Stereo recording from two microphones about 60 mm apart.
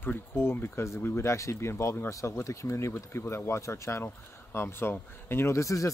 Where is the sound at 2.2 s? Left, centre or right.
Left.